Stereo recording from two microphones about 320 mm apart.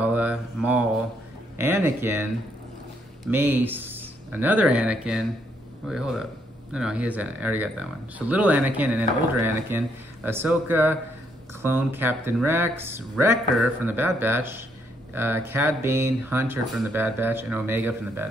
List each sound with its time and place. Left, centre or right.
0.0 s mantra: centre
1.6 s speech: centre
3.3 s speech: centre